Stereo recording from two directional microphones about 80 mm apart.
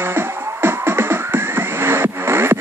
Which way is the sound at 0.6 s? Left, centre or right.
Right.